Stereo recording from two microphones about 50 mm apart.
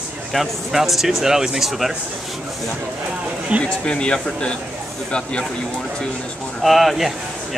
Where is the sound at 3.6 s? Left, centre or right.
Centre.